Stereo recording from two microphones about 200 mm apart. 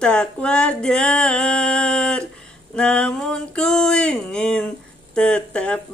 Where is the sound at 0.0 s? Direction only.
5° left (ahead or behind).